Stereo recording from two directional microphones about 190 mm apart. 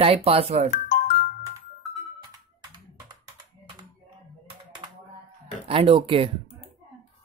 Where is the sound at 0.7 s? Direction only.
40° left (ahead or behind).